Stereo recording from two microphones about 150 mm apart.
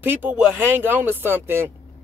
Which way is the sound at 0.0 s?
15° right (ahead or behind).